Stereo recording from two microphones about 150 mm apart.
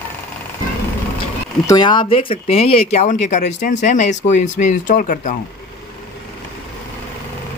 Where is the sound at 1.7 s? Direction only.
30° left (ahead or behind); by 5.3 s 65° left (ahead or behind).